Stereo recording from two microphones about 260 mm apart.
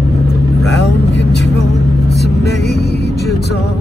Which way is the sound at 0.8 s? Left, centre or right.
Left.